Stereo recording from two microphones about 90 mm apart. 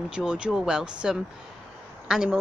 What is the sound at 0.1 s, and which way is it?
A woman's voice, 10° right (ahead or behind).